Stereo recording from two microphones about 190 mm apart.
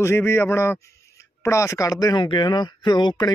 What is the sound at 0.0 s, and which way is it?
A man's voice, 15° left (ahead or behind).